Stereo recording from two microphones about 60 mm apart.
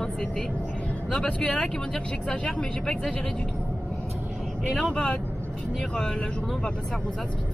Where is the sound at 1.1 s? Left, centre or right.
Centre.